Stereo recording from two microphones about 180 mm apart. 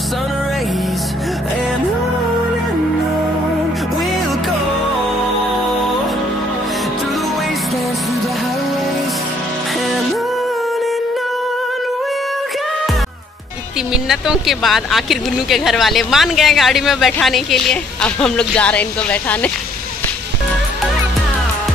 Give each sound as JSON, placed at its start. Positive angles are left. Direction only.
{"t": 14.0, "sound": "speech", "side_deg": -5}